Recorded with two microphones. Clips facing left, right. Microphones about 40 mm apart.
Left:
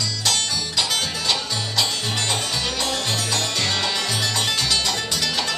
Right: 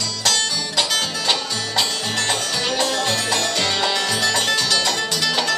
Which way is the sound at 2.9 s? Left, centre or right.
Right.